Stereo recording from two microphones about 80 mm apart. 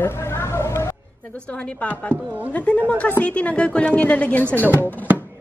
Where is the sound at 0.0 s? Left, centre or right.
Left.